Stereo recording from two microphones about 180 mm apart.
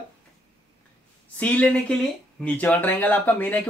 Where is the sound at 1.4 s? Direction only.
5° left (ahead or behind).